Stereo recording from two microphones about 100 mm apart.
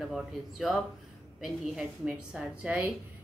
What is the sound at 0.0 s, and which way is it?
A woman's voice, centre (ahead or behind).